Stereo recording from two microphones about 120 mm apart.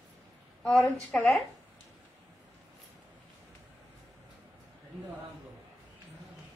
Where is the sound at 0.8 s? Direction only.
10° left (ahead or behind).